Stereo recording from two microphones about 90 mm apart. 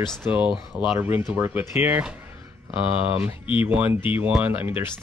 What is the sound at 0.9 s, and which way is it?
Speech, 25° right (ahead or behind).